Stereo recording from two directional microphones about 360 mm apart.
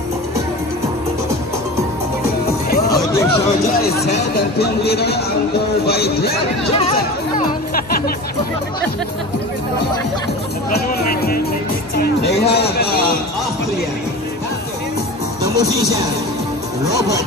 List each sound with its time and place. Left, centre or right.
2.9 s hubbub: centre
4.0 s speech: left
6.7 s music: centre
10.9 s speech: left
15.5 s speech: centre